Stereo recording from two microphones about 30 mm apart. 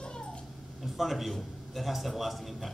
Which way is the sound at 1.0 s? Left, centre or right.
Centre.